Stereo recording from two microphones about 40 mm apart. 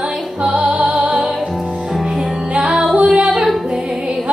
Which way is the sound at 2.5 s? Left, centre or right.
Right.